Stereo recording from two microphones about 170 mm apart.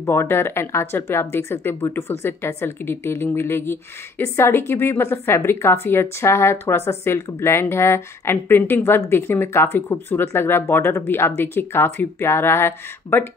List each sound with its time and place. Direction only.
0.0 s a woman's voice: 15° left (ahead or behind)